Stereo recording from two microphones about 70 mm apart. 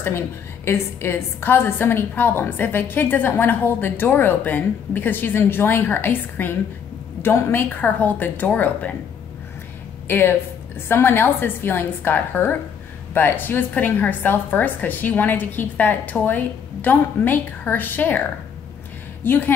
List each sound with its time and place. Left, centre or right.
0.7 s a woman's voice: left
7.7 s a woman's voice: left
10.0 s a woman's voice: left
19.2 s a woman's voice: left